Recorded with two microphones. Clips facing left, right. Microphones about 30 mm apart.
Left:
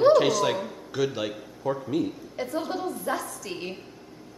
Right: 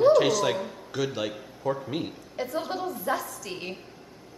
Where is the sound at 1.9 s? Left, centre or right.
Right.